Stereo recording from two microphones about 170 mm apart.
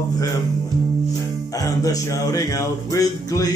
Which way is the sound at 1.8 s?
20° left (ahead or behind).